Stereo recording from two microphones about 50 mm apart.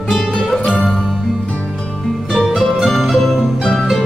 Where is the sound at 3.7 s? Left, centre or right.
Centre.